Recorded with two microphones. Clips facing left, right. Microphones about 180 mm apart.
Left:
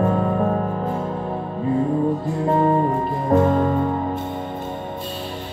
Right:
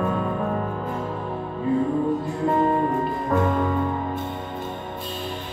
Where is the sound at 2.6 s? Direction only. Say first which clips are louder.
Left 3 dB; 35° left (ahead or behind).